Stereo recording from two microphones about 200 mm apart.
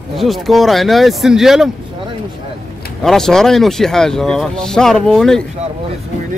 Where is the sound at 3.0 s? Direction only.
Centre (ahead or behind).